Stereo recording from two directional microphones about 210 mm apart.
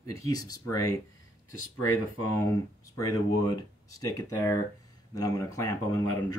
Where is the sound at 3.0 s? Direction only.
15° left (ahead or behind).